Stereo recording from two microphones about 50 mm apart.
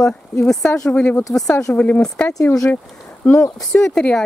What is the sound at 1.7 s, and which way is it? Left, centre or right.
Speech, left.